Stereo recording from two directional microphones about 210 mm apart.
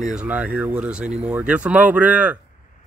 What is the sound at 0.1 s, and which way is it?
Speech, 5° right (ahead or behind).